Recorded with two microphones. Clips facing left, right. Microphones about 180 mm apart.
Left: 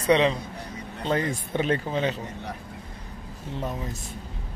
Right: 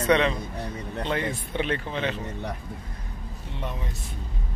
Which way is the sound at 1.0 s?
40° left (ahead or behind).